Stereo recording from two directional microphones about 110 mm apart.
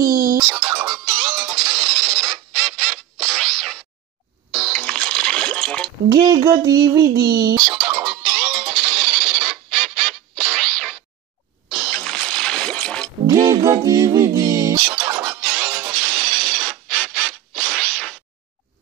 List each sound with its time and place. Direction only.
0.0 s music: 30° right (ahead or behind); by 4.8 s 5° right (ahead or behind)
4.8 s a sound: 10° left (ahead or behind)
6.1 s speech: 35° right (ahead or behind)
8.0 s music: 10° right (ahead or behind); by 13.1 s 10° left (ahead or behind)
13.3 s music: 30° right (ahead or behind)
15.6 s music: 10° right (ahead or behind)
16.8 s a sound: 5° left (ahead or behind)
17.3 s scratch: centre (ahead or behind)